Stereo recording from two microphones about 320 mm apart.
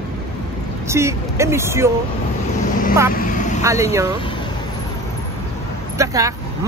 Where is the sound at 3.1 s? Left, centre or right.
Left.